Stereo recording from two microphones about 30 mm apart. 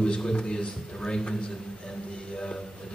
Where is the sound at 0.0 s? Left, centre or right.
Left.